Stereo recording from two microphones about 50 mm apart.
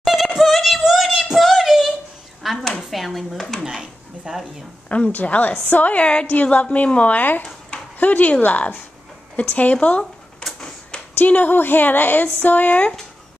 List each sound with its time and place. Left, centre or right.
0.0 s female singing: centre
0.4 s child singing: centre
2.4 s a sound: centre
2.9 s speech: centre
3.6 s speech: centre
4.8 s a woman's voice: left
10.4 s a sound: left
11.1 s a woman's voice: left